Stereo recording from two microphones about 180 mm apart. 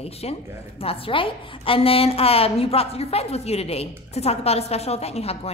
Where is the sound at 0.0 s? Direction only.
35° left (ahead or behind).